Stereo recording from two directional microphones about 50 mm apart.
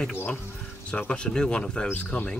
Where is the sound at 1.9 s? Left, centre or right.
Left.